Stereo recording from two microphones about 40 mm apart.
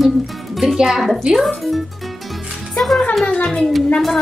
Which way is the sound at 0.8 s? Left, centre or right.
Centre.